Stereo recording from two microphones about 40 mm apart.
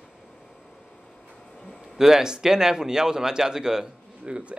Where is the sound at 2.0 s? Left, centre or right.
Centre.